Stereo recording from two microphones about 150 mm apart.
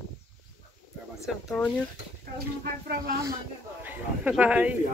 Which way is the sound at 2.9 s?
90° right.